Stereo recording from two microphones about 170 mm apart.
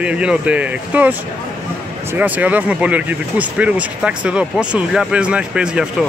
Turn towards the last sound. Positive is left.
turn(degrees=-5)  # may be behind; listen again after turning